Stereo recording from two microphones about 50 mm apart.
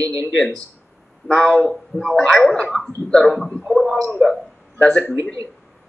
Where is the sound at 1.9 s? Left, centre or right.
Left.